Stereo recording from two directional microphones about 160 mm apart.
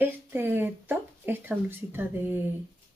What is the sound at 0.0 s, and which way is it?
Speech, 15° right (ahead or behind).